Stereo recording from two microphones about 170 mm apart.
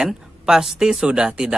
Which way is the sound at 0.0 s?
5° right (ahead or behind).